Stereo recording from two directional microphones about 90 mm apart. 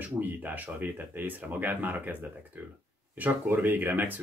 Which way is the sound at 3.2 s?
20° right (ahead or behind).